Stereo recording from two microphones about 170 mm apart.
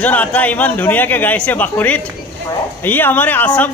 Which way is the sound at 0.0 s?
10° left (ahead or behind).